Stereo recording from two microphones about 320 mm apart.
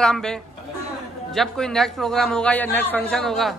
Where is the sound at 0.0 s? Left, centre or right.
Centre.